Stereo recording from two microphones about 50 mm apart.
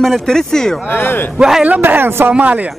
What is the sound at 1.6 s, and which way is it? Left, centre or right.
Speech, right.